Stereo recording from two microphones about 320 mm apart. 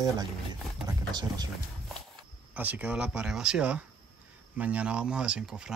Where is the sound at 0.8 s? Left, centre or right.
Centre.